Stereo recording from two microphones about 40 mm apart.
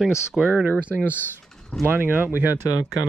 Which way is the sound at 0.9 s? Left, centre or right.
Right.